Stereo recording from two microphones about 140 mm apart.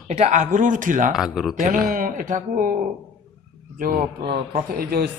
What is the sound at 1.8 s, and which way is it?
Speech, 80° right.